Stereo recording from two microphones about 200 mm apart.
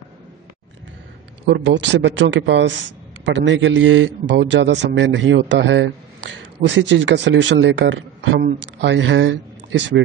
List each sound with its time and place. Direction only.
1.4 s a man's voice: 65° right (ahead or behind)